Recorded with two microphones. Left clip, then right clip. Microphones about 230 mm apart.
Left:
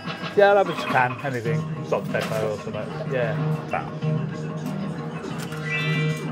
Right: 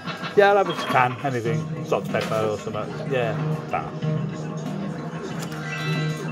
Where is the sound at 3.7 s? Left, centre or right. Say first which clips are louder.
Right 1 dB; centre.